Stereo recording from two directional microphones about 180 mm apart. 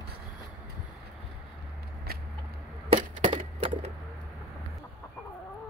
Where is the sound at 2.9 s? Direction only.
30° right (ahead or behind).